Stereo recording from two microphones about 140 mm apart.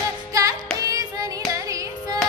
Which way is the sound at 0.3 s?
25° right (ahead or behind).